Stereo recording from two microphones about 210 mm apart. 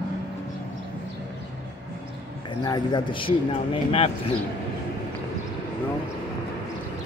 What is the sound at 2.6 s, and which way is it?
Speech, 20° left (ahead or behind).